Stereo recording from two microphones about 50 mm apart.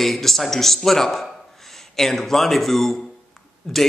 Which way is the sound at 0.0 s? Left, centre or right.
Centre.